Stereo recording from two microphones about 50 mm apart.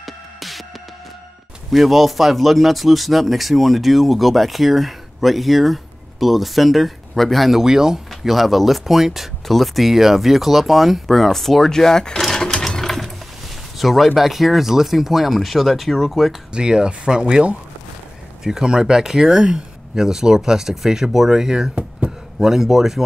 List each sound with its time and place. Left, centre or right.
0.0 s music: centre
1.7 s speech: centre
7.6 s speech: centre
12.2 s sewing machine: centre
12.6 s ratchet: centre
13.7 s speech: centre
16.5 s speech: centre